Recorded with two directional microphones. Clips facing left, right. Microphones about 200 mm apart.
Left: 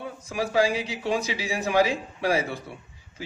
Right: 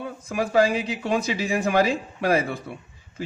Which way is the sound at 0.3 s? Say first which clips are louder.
Right 3 dB; 55° right (ahead or behind).